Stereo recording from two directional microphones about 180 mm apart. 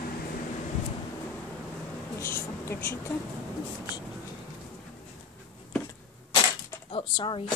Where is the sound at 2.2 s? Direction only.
15° left (ahead or behind).